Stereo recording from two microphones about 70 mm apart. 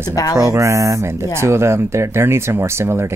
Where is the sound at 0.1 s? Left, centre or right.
Left.